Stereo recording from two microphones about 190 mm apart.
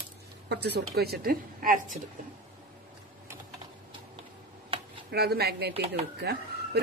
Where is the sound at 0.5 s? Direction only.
60° right (ahead or behind).